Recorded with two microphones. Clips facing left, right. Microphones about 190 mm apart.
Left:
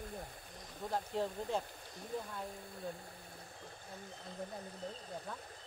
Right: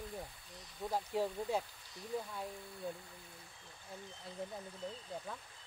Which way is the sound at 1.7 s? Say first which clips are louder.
Left 8 dB; 55° left (ahead or behind).